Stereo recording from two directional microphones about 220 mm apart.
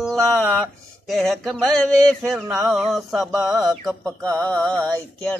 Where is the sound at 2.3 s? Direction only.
Centre (ahead or behind).